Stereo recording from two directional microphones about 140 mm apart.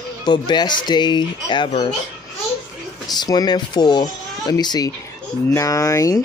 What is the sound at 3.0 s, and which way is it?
Speech, 30° left (ahead or behind).